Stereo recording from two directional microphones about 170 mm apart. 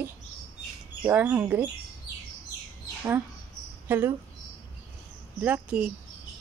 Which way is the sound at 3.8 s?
10° right (ahead or behind).